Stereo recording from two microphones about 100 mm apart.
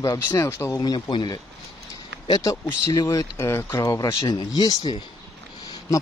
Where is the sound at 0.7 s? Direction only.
40° left (ahead or behind).